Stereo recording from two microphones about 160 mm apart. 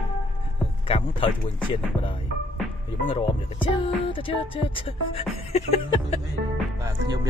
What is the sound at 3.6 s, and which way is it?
Music, 35° left (ahead or behind).